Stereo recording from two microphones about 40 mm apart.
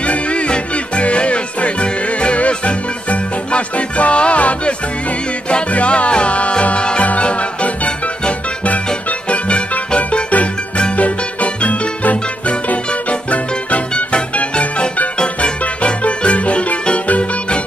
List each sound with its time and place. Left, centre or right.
0.0 s music: left
9.9 s music: left